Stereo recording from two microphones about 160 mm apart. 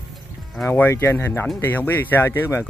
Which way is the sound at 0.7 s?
15° left (ahead or behind).